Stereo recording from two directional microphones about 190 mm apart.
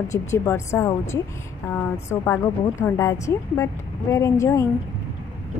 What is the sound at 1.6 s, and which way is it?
A woman's voice, 15° left (ahead or behind).